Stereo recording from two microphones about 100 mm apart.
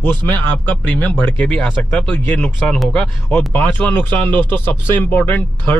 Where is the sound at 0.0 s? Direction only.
20° left (ahead or behind).